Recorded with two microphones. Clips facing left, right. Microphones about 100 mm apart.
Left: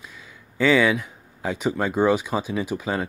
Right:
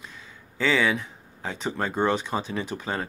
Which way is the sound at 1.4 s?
10° left (ahead or behind).